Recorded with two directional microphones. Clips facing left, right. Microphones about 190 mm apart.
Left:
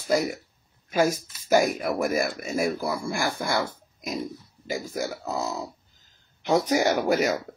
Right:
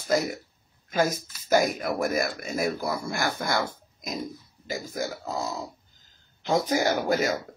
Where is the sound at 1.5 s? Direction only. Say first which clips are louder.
Left 2 dB; 5° left (ahead or behind).